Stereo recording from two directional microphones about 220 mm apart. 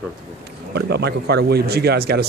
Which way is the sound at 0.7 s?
50° right (ahead or behind).